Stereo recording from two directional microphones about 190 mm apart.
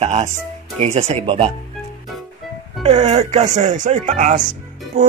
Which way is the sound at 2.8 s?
35° right (ahead or behind).